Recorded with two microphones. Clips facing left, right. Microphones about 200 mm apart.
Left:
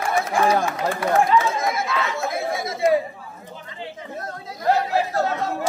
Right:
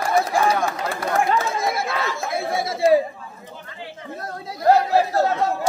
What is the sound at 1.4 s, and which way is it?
Chatter, 35° right (ahead or behind).